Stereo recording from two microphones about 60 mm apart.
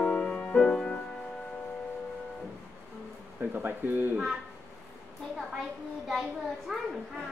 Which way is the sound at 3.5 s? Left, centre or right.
Right.